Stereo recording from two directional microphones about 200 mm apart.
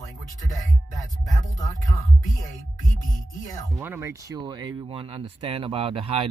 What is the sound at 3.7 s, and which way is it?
Speech, 15° right (ahead or behind).